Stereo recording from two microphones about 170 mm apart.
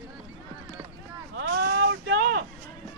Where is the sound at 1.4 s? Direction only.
90° right.